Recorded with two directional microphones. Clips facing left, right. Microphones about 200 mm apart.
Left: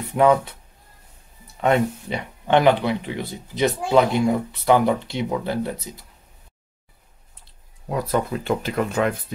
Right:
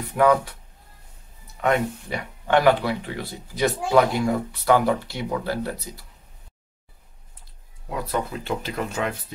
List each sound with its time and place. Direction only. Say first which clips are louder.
0.1 s speech: left 2 dB; 25° left (ahead or behind)
1.6 s speech: left 3 dB; 25° left (ahead or behind)
7.9 s speech: left 4 dB; 50° left (ahead or behind)